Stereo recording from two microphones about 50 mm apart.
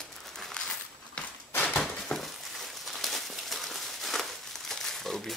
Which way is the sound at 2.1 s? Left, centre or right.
Left.